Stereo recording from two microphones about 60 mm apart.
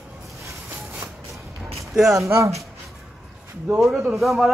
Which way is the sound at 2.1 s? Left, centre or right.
Right.